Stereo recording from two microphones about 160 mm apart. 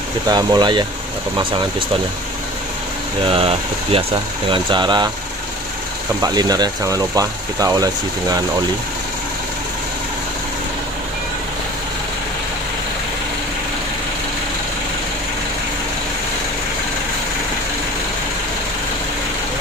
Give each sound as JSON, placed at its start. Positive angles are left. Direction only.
{"t": 0.3, "sound": "speech", "side_deg": -25}
{"t": 3.3, "sound": "speech", "side_deg": -35}
{"t": 6.2, "sound": "speech", "side_deg": -25}